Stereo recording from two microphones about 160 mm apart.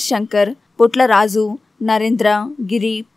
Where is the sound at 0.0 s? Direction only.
Centre (ahead or behind).